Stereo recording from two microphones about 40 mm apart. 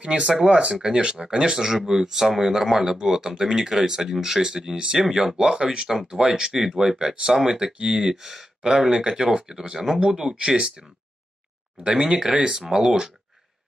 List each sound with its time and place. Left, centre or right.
0.0 s speech: right
7.7 s speech: right